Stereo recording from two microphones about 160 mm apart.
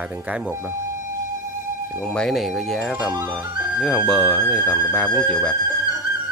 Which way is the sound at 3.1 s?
20° right (ahead or behind).